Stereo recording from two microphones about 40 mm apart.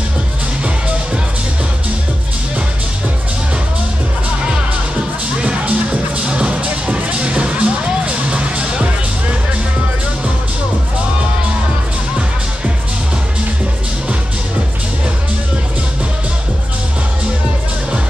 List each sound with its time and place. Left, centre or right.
5.4 s music: right
6.6 s music: right